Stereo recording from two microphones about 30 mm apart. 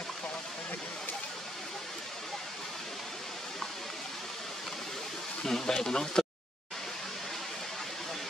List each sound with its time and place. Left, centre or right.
5.4 s speech: centre